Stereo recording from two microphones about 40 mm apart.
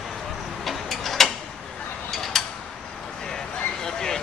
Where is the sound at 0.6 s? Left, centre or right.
Centre.